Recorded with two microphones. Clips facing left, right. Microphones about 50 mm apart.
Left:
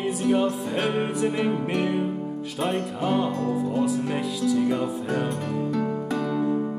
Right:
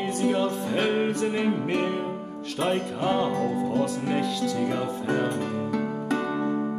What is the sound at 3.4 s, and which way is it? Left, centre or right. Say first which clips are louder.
Speech: left 1 dB; centre.